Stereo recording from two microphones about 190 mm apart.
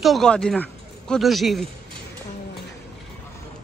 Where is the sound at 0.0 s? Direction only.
Centre (ahead or behind).